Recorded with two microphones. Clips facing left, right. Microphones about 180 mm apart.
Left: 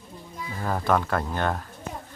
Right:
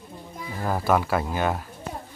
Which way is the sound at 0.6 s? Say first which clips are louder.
Right 1 dB; 5° right (ahead or behind).